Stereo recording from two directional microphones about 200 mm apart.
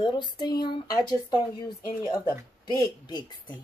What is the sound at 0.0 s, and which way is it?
Speech, 20° left (ahead or behind).